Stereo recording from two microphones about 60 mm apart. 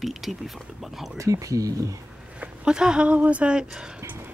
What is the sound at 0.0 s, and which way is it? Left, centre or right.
Speech, centre.